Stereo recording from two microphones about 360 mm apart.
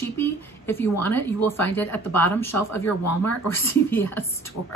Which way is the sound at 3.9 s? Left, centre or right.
Centre.